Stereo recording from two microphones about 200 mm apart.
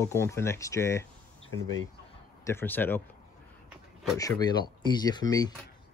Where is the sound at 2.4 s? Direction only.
10° left (ahead or behind).